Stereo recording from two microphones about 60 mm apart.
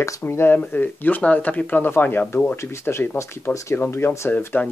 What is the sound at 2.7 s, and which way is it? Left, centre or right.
Speech, left.